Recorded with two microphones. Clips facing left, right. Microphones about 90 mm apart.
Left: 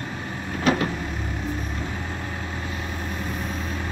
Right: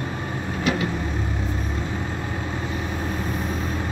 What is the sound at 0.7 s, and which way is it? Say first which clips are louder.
Vehicle: left 3 dB; 40° left (ahead or behind).